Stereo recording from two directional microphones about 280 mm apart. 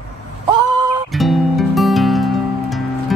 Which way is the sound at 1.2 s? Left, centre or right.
Centre.